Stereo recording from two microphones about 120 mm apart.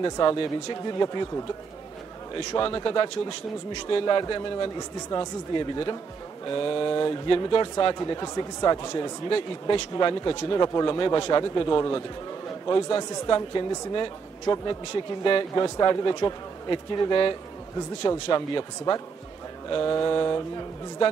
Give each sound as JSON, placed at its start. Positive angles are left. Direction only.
{"t": 0.0, "sound": "speech", "side_deg": 35}
{"t": 2.3, "sound": "speech", "side_deg": 35}